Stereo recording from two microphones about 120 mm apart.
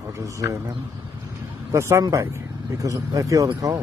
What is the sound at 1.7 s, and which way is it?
A man's voice, 25° right (ahead or behind).